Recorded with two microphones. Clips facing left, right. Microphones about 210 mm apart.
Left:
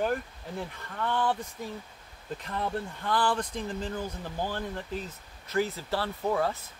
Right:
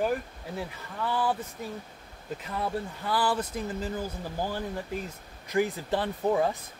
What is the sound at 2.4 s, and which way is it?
Speech, 5° right (ahead or behind).